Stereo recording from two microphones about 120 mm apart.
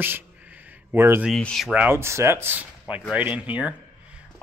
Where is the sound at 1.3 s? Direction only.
5° left (ahead or behind).